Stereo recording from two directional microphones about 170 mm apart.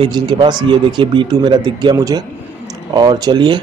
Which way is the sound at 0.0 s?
25° right (ahead or behind).